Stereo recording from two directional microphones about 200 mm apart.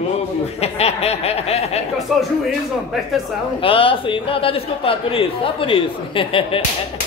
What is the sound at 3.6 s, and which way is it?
A man's voice, 25° left (ahead or behind).